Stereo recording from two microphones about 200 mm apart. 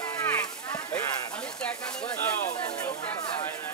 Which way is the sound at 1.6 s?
5° left (ahead or behind).